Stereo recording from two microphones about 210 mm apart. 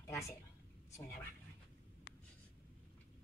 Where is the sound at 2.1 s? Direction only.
45° left (ahead or behind).